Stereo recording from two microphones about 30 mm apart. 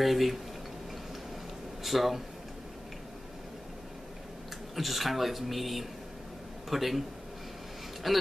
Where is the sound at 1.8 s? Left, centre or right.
Centre.